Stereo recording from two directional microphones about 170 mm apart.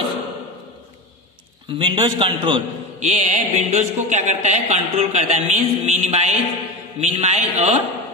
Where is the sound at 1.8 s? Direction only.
30° right (ahead or behind).